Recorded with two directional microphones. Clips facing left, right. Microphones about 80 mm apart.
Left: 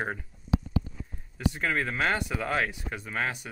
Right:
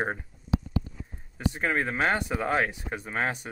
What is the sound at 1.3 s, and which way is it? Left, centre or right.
Speech, right.